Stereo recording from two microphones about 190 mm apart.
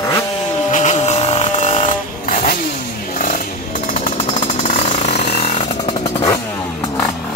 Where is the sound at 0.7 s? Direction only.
40° left (ahead or behind).